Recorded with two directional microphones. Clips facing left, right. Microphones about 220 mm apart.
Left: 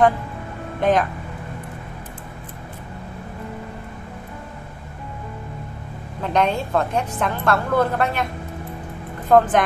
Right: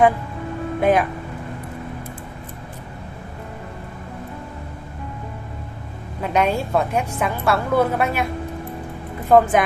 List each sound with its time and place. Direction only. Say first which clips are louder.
0.7 s speech: right 1 dB; 10° right (ahead or behind)
6.2 s a woman's voice: right 1 dB; 10° right (ahead or behind)
9.3 s a woman's voice: right 1 dB; 5° right (ahead or behind)